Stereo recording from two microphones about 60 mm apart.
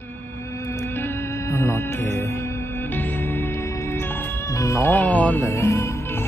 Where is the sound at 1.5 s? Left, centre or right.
Left.